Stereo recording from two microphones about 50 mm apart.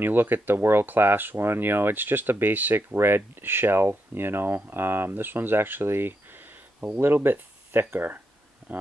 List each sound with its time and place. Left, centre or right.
0.0 s speech: right
3.0 s speech: right
8.6 s a sound: right